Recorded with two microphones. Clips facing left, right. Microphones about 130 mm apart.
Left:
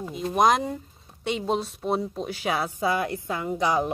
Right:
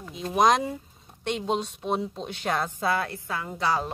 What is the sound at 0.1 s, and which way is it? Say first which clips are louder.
A woman's voice: even; centre (ahead or behind).